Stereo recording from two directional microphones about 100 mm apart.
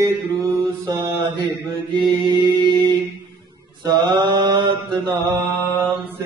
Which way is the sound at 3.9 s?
45° right (ahead or behind).